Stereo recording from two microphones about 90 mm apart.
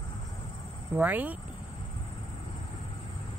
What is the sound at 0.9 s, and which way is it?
Speech, 15° right (ahead or behind).